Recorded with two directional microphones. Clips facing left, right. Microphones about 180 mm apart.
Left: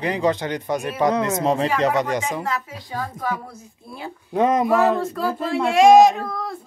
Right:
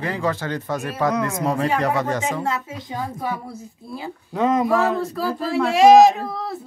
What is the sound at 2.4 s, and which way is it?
Speech, 25° right (ahead or behind).